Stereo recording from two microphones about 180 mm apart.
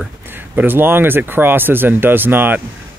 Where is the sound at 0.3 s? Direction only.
10° right (ahead or behind).